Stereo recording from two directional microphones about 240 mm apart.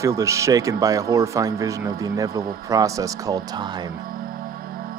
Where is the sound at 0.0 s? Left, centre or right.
Centre.